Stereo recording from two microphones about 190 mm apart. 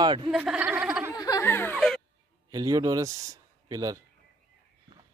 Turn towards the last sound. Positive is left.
turn(degrees=-20)  # may be behind; listen again after turning